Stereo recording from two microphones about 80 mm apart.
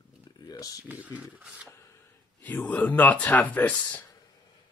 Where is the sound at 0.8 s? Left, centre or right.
Centre.